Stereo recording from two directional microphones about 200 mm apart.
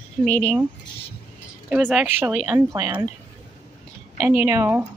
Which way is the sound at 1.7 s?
5° right (ahead or behind).